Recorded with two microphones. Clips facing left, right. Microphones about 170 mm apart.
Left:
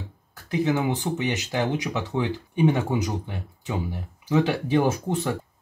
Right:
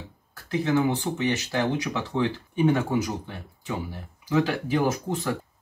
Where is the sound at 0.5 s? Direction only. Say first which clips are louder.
Even; 20° left (ahead or behind).